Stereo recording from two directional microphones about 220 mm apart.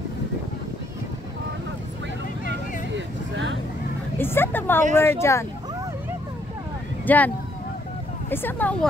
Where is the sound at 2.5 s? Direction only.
55° right (ahead or behind).